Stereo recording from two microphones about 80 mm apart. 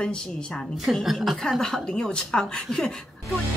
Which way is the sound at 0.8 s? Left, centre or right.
Centre.